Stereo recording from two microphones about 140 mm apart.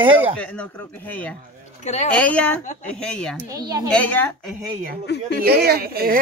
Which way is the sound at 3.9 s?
10° left (ahead or behind).